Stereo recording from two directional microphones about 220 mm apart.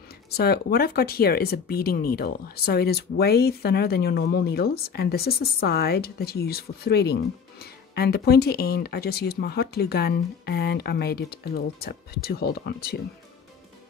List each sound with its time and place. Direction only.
0.4 s speech: 45° left (ahead or behind)